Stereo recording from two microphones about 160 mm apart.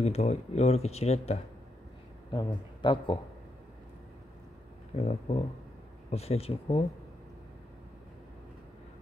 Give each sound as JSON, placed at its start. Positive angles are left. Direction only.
{"t": 0.0, "sound": "speech", "side_deg": 40}
{"t": 2.3, "sound": "speech", "side_deg": 30}
{"t": 4.9, "sound": "speech", "side_deg": 40}